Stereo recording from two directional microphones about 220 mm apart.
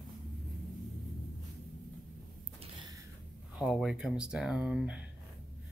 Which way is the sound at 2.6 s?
20° right (ahead or behind).